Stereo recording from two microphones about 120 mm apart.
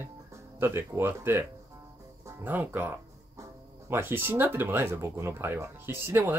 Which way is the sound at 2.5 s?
15° right (ahead or behind).